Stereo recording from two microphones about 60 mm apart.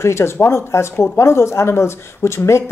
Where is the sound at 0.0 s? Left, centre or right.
Left.